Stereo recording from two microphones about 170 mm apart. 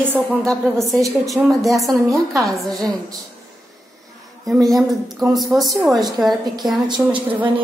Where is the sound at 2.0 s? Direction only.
20° right (ahead or behind).